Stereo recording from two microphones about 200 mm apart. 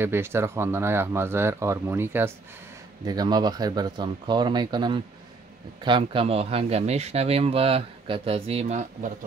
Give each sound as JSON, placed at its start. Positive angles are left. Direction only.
{"t": 0.0, "sound": "speech", "side_deg": -10}